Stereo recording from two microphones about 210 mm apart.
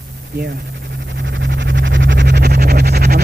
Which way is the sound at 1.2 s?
55° right (ahead or behind).